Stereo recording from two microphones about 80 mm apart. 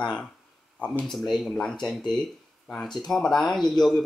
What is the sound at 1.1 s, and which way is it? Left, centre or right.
Speech, centre.